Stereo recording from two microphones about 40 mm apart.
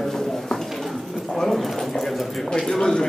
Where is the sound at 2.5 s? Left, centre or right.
Centre.